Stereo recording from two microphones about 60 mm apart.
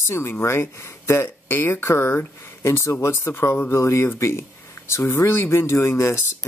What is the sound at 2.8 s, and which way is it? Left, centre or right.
Speech, left.